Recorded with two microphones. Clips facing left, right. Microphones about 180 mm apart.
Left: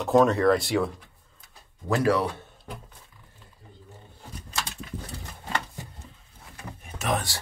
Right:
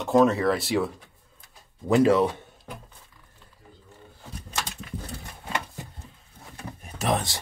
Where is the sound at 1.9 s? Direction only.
20° right (ahead or behind).